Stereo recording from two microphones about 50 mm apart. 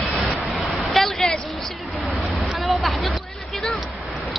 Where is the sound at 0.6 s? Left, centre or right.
Centre.